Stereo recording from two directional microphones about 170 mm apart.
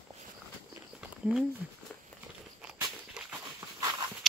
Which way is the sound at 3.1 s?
5° right (ahead or behind).